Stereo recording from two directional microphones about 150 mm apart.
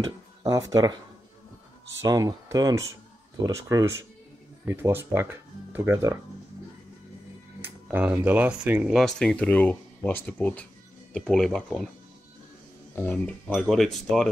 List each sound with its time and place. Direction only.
0.5 s speech: 20° right (ahead or behind)
2.0 s speech: 25° right (ahead or behind)
7.6 s speech: 10° right (ahead or behind)
8.9 s speech: 5° left (ahead or behind)
12.9 s speech: 10° left (ahead or behind)
13.5 s speech: centre (ahead or behind)